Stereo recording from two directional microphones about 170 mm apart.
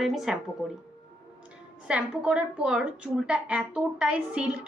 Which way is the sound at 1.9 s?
5° right (ahead or behind).